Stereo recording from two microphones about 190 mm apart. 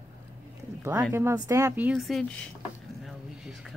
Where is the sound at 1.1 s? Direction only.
15° right (ahead or behind).